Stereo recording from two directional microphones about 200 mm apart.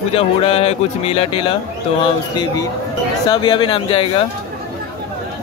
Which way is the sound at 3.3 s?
25° left (ahead or behind).